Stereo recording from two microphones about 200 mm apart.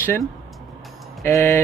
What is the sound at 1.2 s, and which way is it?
Speech, 10° left (ahead or behind).